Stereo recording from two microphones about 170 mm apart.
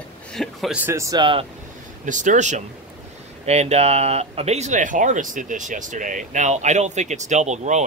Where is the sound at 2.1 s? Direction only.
45° right (ahead or behind).